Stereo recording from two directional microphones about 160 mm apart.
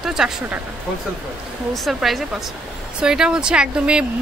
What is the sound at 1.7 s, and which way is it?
Speech, centre (ahead or behind).